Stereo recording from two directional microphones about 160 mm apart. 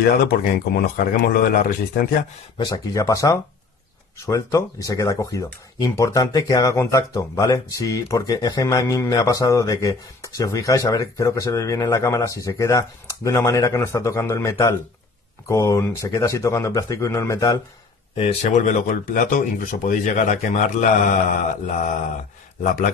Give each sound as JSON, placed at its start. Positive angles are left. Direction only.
{"t": 0.0, "sound": "speech", "side_deg": 70}
{"t": 2.6, "sound": "speech", "side_deg": 20}
{"t": 18.1, "sound": "speech", "side_deg": 45}
{"t": 21.6, "sound": "mantra", "side_deg": 55}